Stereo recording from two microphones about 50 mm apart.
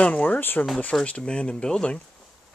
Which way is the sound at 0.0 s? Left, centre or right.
Left.